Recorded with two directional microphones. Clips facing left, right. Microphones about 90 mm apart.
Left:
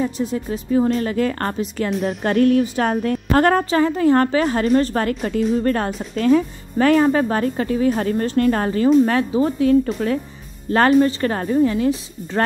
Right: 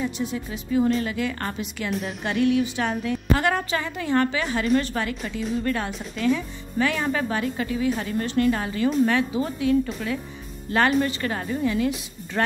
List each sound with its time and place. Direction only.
0.0 s speech: 40° left (ahead or behind)